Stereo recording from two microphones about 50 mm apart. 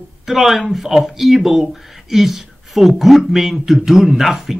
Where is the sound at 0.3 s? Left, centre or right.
Centre.